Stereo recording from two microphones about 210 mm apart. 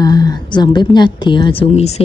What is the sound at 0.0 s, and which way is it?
A woman's voice, 20° left (ahead or behind).